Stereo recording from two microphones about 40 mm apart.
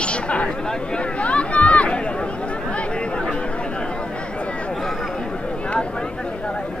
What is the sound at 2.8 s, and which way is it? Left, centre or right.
Chatter, left.